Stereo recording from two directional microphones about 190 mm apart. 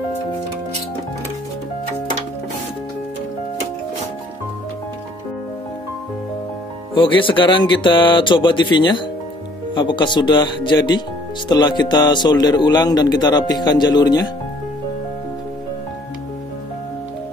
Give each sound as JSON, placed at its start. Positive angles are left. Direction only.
{"t": 6.9, "sound": "a man's voice", "side_deg": 25}